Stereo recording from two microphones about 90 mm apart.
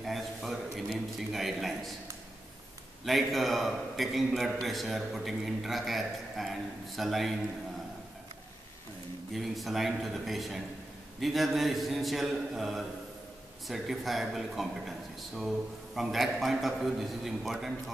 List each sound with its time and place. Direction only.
0.0 s a man's voice: centre (ahead or behind)
3.1 s speech: centre (ahead or behind)
9.3 s speech: centre (ahead or behind)